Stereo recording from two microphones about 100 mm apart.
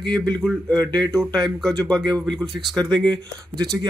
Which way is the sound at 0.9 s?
40° right (ahead or behind).